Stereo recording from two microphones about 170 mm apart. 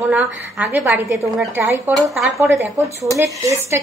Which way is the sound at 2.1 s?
Centre (ahead or behind).